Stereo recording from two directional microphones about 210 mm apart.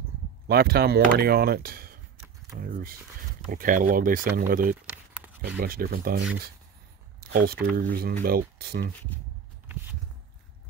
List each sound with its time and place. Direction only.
0.5 s speech: 45° right (ahead or behind)
4.8 s a sound: 10° right (ahead or behind)
5.6 s speech: 45° right (ahead or behind)